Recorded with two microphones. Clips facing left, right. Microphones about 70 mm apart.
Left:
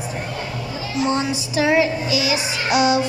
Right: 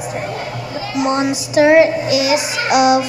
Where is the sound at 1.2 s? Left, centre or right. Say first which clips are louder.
Right 7 dB; right.